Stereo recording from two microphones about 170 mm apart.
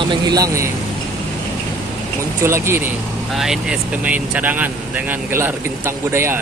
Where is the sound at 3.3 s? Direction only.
Centre (ahead or behind).